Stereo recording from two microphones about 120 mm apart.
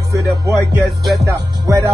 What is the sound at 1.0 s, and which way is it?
Music, centre (ahead or behind).